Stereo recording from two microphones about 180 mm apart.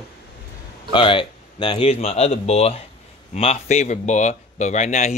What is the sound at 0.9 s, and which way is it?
Speech, 30° left (ahead or behind).